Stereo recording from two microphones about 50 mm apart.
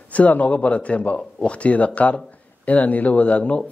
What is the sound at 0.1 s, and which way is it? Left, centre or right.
A man's voice, left.